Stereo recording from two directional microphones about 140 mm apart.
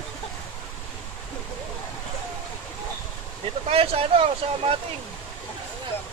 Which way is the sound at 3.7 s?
45° right (ahead or behind).